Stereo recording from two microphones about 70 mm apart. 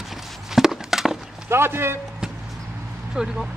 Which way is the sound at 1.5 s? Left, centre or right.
Right.